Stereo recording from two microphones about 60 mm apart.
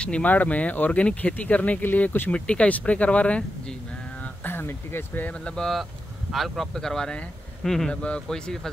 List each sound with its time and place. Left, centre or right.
0.0 s speech: left
2.4 s speech: centre
4.2 s speech: left
5.3 s speech: centre
7.9 s speech: centre